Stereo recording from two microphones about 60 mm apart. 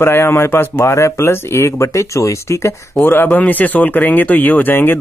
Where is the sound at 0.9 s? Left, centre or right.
Left.